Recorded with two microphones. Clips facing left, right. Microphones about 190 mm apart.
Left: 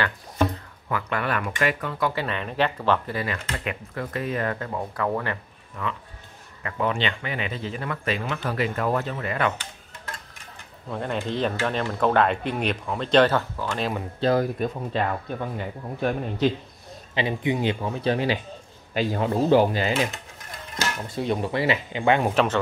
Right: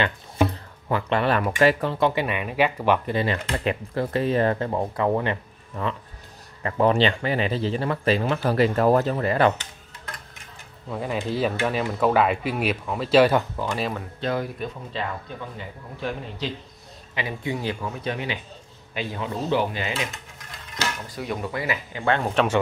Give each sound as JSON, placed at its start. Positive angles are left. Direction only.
{"t": 0.8, "sound": "speech", "side_deg": -30}
{"t": 2.2, "sound": "speech", "side_deg": -10}
{"t": 3.2, "sound": "speech", "side_deg": -30}
{"t": 5.8, "sound": "speech", "side_deg": -35}
{"t": 10.9, "sound": "speech", "side_deg": -5}
{"t": 14.2, "sound": "speech", "side_deg": 40}
{"t": 17.1, "sound": "speech", "side_deg": 25}
{"t": 21.1, "sound": "speech", "side_deg": 25}
{"t": 22.0, "sound": "speech", "side_deg": 15}